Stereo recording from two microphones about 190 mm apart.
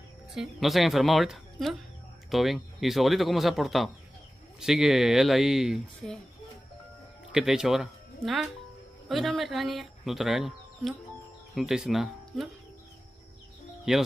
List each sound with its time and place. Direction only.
0.3 s speech: centre (ahead or behind)
7.3 s speech: 5° right (ahead or behind)
13.9 s speech: 5° right (ahead or behind)